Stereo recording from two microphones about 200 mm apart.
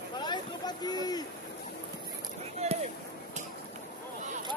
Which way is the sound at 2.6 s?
30° right (ahead or behind).